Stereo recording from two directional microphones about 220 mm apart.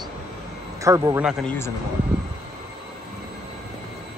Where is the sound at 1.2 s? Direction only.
Centre (ahead or behind).